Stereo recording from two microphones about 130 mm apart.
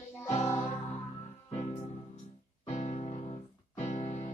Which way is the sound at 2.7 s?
55° left (ahead or behind).